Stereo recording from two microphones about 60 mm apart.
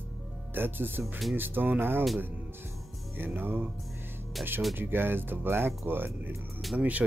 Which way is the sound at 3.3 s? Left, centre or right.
Right.